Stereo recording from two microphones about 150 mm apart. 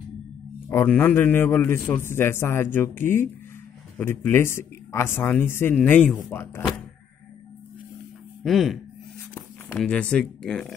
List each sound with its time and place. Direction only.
0.7 s a man's voice: 15° left (ahead or behind)
8.5 s speech: centre (ahead or behind)
9.8 s speech: 5° left (ahead or behind)